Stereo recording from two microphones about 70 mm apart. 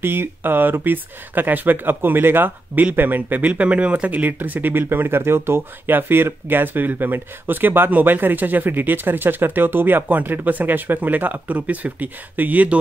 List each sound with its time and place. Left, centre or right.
0.0 s speech: right